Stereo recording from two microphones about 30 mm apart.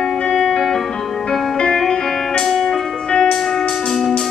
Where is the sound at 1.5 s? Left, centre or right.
Left.